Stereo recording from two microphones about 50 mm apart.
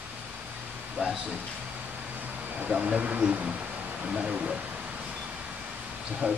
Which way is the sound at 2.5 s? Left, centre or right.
Right.